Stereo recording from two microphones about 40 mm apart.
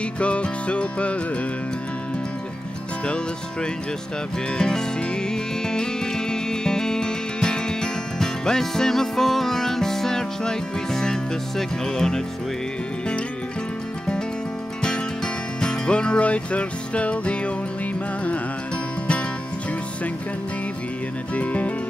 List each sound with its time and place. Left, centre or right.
0.0 s music: left
4.6 s music: centre
14.8 s music: left
21.4 s music: left